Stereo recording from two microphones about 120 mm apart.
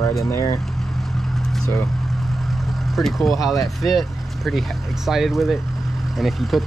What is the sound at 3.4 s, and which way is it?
Speech, 30° left (ahead or behind).